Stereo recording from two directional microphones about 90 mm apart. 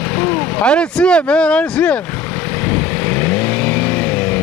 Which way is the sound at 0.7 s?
10° left (ahead or behind).